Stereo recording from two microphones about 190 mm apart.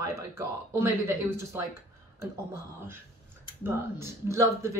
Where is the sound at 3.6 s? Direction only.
15° right (ahead or behind).